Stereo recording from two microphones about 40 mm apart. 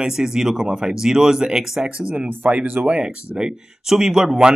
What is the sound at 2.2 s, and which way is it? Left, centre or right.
Speech, right.